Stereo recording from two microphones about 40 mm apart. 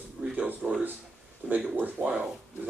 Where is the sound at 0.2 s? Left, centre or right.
Right.